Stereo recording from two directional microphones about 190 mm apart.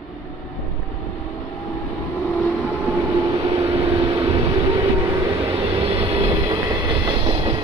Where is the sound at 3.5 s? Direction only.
30° right (ahead or behind).